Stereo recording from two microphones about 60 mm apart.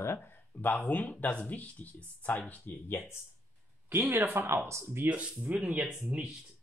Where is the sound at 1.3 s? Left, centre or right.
Left.